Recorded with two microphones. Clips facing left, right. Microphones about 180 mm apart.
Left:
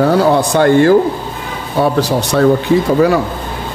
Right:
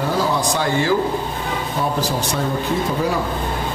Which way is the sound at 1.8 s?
70° left (ahead or behind).